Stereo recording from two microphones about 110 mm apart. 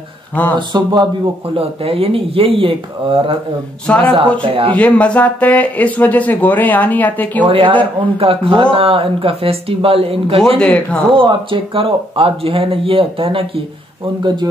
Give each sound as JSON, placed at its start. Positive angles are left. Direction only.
{"t": 0.6, "sound": "speech", "side_deg": -45}
{"t": 1.6, "sound": "speech", "side_deg": -60}
{"t": 3.8, "sound": "speech", "side_deg": 10}
{"t": 4.2, "sound": "speech", "side_deg": -55}
{"t": 4.7, "sound": "speech", "side_deg": 15}
{"t": 7.4, "sound": "speech", "side_deg": -50}
{"t": 10.6, "sound": "speech", "side_deg": 10}
{"t": 11.1, "sound": "speech", "side_deg": -50}
{"t": 14.2, "sound": "speech", "side_deg": -40}